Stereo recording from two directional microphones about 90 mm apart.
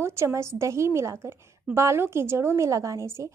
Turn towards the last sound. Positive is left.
turn(degrees=-35)  # may be behind; listen again after turning